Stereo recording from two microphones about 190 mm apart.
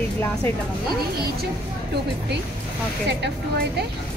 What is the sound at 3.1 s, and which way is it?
Speech, 60° right (ahead or behind).